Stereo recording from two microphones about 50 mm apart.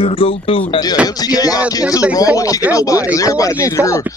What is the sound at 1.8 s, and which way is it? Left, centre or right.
Speech, right.